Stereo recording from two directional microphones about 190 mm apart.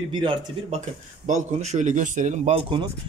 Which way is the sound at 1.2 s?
40° right (ahead or behind).